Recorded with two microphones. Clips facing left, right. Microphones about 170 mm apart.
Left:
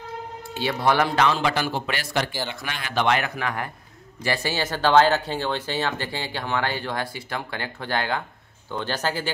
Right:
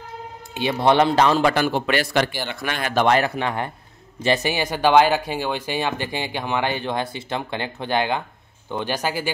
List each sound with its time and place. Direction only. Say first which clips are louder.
0.6 s speech: right 4 dB; 20° right (ahead or behind)
1.2 s a man's voice: right 4 dB; 45° right (ahead or behind); by 2.2 s 65° right (ahead or behind)
2.4 s a man's voice: right 5 dB; 55° right (ahead or behind); by 9.3 s 10° right (ahead or behind)